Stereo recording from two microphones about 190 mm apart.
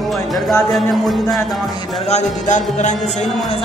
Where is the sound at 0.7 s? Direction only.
Centre (ahead or behind).